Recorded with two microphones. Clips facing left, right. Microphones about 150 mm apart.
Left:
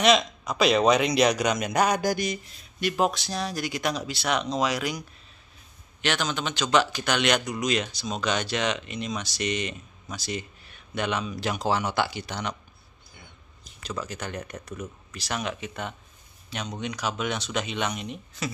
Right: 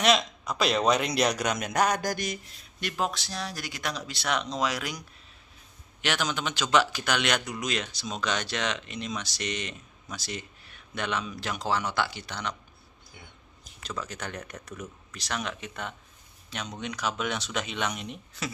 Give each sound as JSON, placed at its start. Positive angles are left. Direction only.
{"t": 0.0, "sound": "speech", "side_deg": 0}
{"t": 3.0, "sound": "speech", "side_deg": 15}
{"t": 4.0, "sound": "speech", "side_deg": 5}
{"t": 13.8, "sound": "speech", "side_deg": 5}